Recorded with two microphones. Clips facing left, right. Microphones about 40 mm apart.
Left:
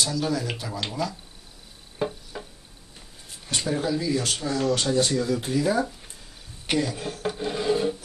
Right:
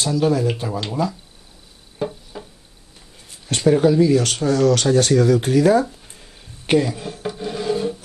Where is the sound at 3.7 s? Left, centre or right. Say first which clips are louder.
Right 12 dB; right.